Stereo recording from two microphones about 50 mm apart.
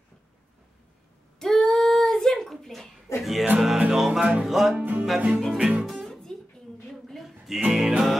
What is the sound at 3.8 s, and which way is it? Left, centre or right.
Music, centre.